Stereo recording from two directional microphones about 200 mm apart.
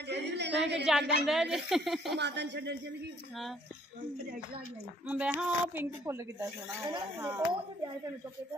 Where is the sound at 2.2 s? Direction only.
60° right (ahead or behind).